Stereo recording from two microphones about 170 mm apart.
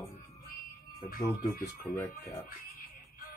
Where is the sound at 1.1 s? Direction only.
60° left (ahead or behind).